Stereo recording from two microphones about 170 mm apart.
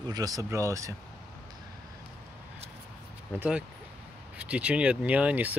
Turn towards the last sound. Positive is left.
turn(degrees=-10)  # may be behind; listen again after turning